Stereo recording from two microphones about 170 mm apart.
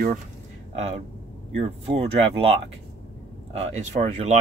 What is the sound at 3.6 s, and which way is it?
Speech, 40° right (ahead or behind).